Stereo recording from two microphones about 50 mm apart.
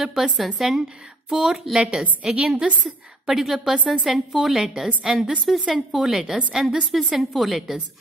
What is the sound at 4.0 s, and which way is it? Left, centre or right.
A woman's voice, centre.